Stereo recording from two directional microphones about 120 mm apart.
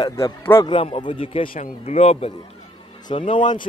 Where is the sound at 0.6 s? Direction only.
50° left (ahead or behind).